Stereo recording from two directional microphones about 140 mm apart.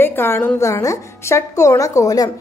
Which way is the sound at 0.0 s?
15° left (ahead or behind).